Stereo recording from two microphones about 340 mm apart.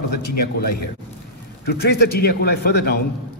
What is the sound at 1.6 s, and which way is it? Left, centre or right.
A man's voice, left.